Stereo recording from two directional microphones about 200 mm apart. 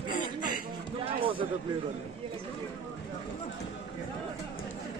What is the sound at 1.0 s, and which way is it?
Speech, 25° right (ahead or behind).